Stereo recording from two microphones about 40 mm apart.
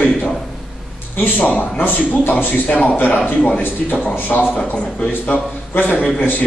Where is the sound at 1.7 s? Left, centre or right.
Left.